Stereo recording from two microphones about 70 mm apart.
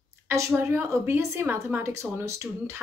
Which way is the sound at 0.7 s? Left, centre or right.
Right.